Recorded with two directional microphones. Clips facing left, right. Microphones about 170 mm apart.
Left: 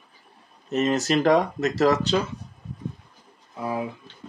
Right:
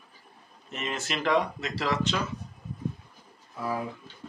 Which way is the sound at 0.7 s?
40° left (ahead or behind).